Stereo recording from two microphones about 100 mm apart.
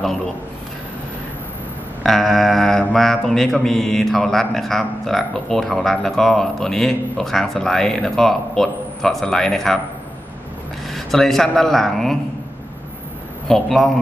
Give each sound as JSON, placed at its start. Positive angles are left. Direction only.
{"t": 2.0, "sound": "speech", "side_deg": 0}
{"t": 10.9, "sound": "speech", "side_deg": 5}
{"t": 13.5, "sound": "speech", "side_deg": 5}